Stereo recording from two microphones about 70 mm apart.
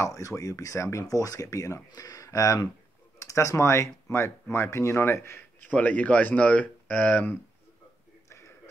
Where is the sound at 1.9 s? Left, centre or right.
Left.